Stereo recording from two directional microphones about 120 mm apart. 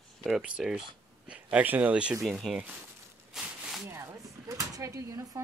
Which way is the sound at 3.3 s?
5° right (ahead or behind).